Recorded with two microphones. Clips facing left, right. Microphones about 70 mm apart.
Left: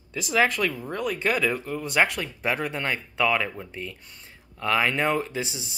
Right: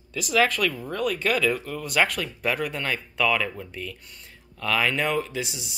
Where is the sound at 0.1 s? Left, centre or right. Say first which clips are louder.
Right 1 dB; left.